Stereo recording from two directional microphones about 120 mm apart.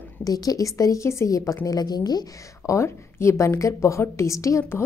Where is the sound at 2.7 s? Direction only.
25° left (ahead or behind).